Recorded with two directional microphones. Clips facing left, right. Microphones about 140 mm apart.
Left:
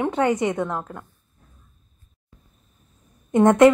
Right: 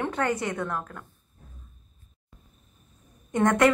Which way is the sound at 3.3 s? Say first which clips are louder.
Left 7 dB; 20° left (ahead or behind).